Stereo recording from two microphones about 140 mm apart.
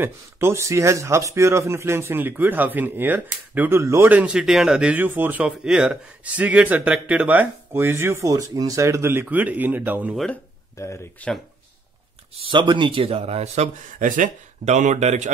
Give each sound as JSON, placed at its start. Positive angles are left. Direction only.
{"t": 0.0, "sound": "speech", "side_deg": -20}
{"t": 10.1, "sound": "speech", "side_deg": 5}
{"t": 10.8, "sound": "speech", "side_deg": 20}
{"t": 12.4, "sound": "speech", "side_deg": -35}